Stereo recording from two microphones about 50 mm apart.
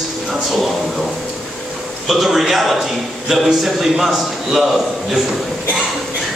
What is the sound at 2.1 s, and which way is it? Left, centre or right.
A man's voice, centre.